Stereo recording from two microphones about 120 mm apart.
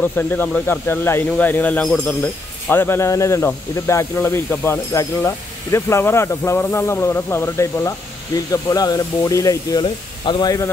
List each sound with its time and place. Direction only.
0.0 s speech: 15° left (ahead or behind); by 10.7 s 30° left (ahead or behind)